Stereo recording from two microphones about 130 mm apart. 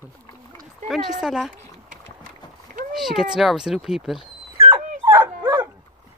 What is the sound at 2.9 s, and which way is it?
Speech, 5° right (ahead or behind).